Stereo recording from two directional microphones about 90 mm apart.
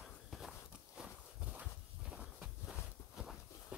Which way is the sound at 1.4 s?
15° right (ahead or behind).